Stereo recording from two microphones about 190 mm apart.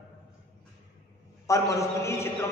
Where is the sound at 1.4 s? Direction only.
15° left (ahead or behind).